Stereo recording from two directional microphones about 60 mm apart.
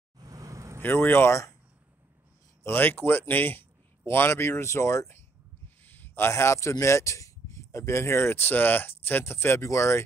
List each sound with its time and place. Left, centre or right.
0.2 s a sound: right
0.8 s speech: left
2.6 s speech: left
5.9 s a sound: left
6.3 s speech: left
9.2 s speech: left